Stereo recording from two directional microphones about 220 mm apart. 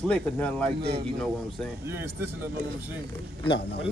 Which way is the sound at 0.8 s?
45° right (ahead or behind).